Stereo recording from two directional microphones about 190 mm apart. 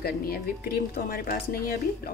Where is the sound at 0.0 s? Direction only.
55° left (ahead or behind).